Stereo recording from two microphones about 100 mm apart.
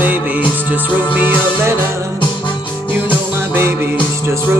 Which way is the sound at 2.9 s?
20° right (ahead or behind).